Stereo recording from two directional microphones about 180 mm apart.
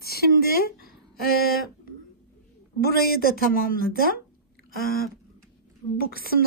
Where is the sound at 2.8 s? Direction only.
60° left (ahead or behind).